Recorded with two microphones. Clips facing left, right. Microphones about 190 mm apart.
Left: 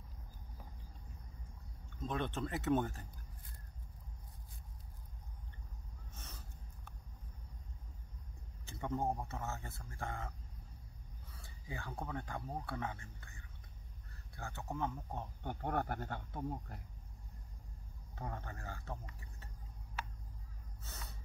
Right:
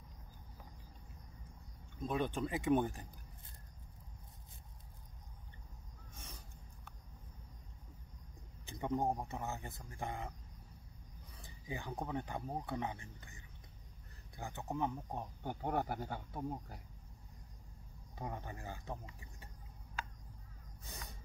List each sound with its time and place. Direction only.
2.0 s speech: 10° right (ahead or behind)
6.1 s a sound: 10° right (ahead or behind)
8.6 s speech: 15° right (ahead or behind)
11.3 s speech: 15° right (ahead or behind)
18.1 s speech: 15° right (ahead or behind)
20.8 s a sound: 15° right (ahead or behind)